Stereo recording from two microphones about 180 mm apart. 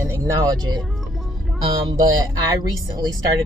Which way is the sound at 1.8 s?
25° right (ahead or behind).